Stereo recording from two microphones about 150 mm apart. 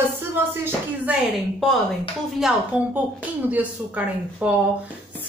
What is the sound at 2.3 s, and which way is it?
A woman's voice, 5° right (ahead or behind).